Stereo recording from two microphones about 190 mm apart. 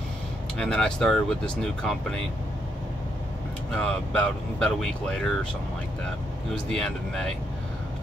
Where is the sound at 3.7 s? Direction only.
5° left (ahead or behind).